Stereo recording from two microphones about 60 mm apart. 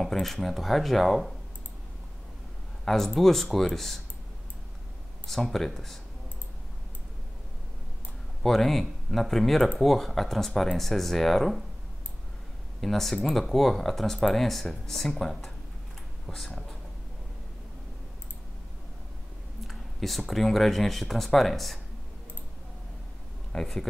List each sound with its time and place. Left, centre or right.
0.0 s speech: centre
2.8 s speech: centre
5.2 s speech: centre
8.4 s speech: centre
12.8 s speech: centre
19.7 s speech: centre
23.5 s speech: centre